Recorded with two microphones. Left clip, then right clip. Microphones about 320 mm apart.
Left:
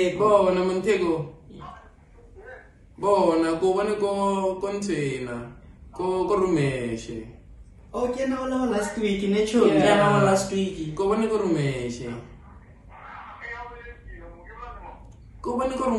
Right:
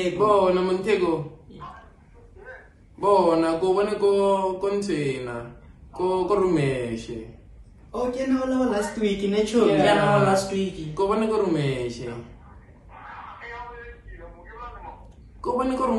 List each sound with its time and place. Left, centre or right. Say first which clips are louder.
0.0 s a man's voice: even; centre
3.0 s mantra: right 1 dB; centre
7.9 s a man's voice: right 1 dB; centre
10.6 s mantra: right 2 dB; centre
11.1 s mantra: even; centre
15.4 s mantra: right 2 dB; centre